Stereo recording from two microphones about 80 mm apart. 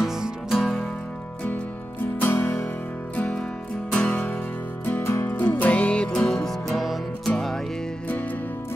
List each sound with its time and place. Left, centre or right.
0.0 s music: centre
2.1 s music: left
3.9 s music: centre
4.8 s music: left; by 7.5 s centre